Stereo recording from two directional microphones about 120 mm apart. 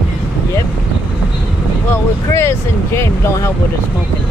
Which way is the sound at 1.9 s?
20° left (ahead or behind).